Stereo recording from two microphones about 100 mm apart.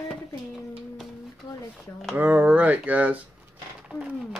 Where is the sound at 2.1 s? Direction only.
15° right (ahead or behind).